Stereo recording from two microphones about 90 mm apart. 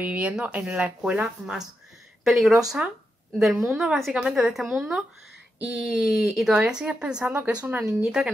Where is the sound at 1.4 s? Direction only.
5° right (ahead or behind).